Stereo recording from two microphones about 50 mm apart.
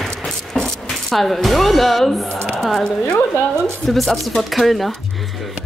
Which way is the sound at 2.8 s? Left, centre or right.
Centre.